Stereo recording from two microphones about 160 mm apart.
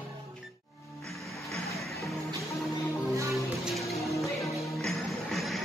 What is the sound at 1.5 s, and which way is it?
Music, centre (ahead or behind).